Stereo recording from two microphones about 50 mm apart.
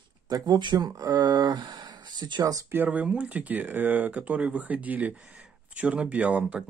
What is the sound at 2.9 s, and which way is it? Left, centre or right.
Speech, right.